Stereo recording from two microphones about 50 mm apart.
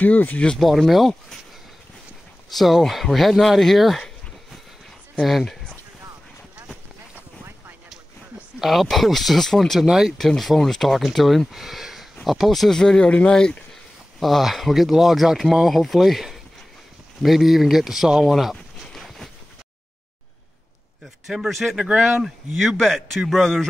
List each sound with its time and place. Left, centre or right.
0.0 s speech: left
0.6 s speech: centre
2.5 s speech: centre
5.2 s speech: centre
8.5 s speech: centre
9.8 s speech: centre
10.1 s speech: centre
14.2 s speech: centre
18.9 s a sound: centre
21.5 s speech: centre
22.6 s speech: centre